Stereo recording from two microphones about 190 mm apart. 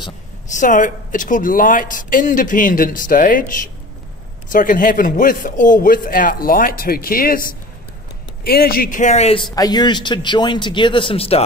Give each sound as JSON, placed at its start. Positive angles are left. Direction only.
{"t": 0.5, "sound": "speech", "side_deg": 40}